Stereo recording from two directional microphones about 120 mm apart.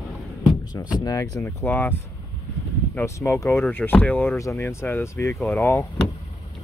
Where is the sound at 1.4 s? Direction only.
15° left (ahead or behind).